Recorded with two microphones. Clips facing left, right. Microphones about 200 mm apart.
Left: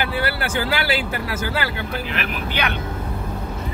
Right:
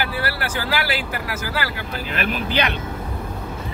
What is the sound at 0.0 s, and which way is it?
Speech, 25° left (ahead or behind).